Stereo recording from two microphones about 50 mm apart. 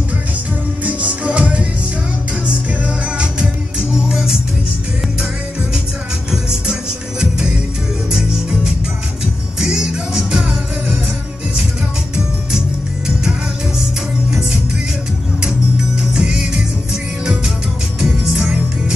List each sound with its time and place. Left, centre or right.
0.8 s music: right
3.9 s music: centre
6.3 s music: centre
16.1 s music: centre
18.0 s music: centre